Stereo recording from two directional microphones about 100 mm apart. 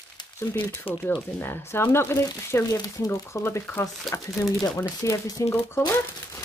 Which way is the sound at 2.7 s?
40° left (ahead or behind).